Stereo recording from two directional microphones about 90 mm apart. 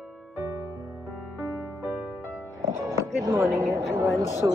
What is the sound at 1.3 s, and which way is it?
Music, 20° right (ahead or behind).